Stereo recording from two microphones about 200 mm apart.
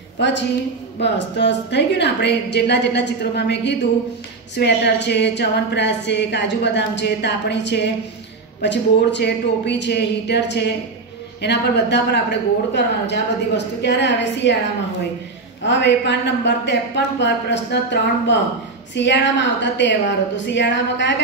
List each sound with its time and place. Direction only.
0.2 s a woman's voice: 60° left (ahead or behind)
15.6 s a woman's voice: 60° left (ahead or behind)